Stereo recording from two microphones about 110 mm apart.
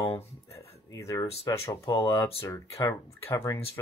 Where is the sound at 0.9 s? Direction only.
30° left (ahead or behind).